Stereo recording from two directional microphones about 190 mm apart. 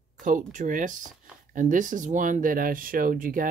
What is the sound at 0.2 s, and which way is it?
Speech, 45° right (ahead or behind).